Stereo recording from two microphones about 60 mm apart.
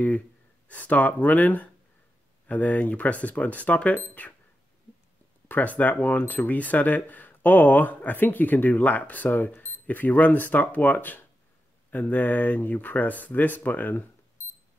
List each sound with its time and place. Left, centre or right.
0.7 s speech: left
5.5 s speech: left
9.8 s speech: left
14.4 s clock: left